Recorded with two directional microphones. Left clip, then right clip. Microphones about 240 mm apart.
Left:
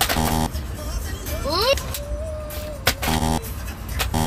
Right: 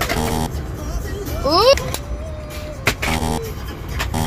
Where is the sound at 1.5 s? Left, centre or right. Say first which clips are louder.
Right 7 dB; centre.